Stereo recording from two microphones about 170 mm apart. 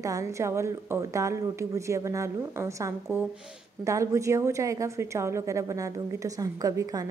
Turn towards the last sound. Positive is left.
turn(degrees=-20)  # may be behind; listen again after turning